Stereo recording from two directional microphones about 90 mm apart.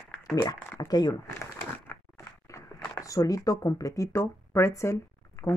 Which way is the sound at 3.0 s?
40° left (ahead or behind).